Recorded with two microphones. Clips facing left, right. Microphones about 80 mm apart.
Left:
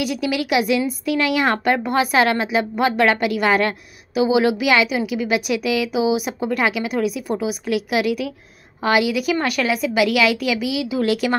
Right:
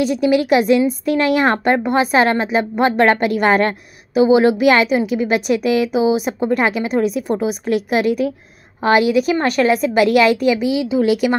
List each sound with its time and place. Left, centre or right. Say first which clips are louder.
0.0 s a woman's voice: right 7 dB; right
11.0 s speech: right 4 dB; centre